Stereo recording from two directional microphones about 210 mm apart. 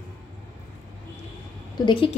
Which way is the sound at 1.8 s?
20° left (ahead or behind).